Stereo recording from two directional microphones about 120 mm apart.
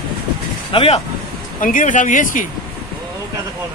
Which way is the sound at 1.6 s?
90° left.